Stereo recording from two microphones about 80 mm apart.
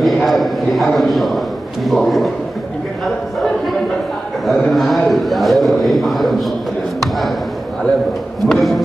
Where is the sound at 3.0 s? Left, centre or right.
Centre.